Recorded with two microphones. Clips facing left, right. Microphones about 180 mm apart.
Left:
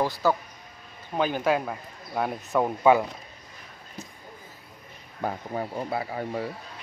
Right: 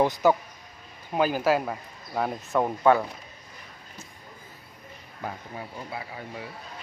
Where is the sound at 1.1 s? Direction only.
5° right (ahead or behind).